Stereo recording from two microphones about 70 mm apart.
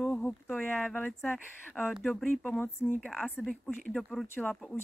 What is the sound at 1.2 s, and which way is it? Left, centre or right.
Speech, left.